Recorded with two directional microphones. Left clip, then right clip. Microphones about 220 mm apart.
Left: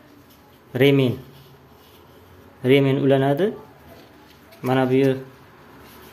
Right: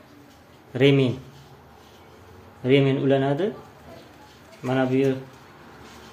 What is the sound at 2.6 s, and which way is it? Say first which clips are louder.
Speech: left 3 dB; 30° left (ahead or behind).